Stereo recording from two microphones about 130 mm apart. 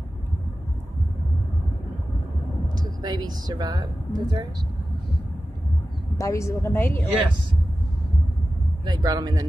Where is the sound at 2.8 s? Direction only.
30° right (ahead or behind).